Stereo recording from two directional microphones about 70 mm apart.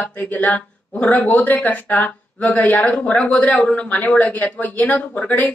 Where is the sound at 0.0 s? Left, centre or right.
Left.